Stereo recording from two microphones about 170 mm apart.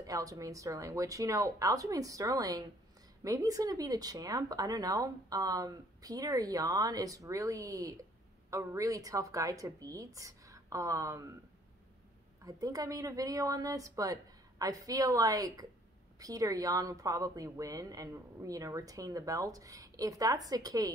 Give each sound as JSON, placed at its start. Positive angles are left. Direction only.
{"t": 0.0, "sound": "speech", "side_deg": -20}
{"t": 12.4, "sound": "speech", "side_deg": -20}